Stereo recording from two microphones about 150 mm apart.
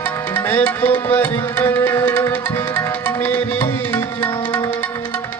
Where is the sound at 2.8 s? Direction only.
15° left (ahead or behind).